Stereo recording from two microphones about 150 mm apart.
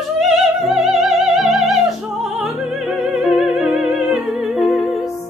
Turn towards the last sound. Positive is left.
turn(degrees=0)  # may be behind; listen again after turning